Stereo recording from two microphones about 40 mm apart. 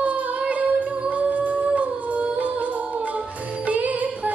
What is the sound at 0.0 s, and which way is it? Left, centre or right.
Music, right.